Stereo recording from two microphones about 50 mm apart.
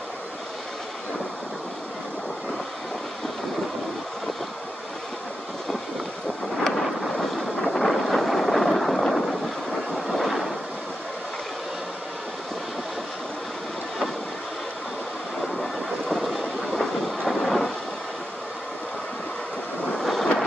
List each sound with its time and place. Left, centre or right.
6.6 s thunder: centre
9.9 s vehicle: centre
15.4 s train: centre
17.3 s thunder: centre
20.0 s vehicle: centre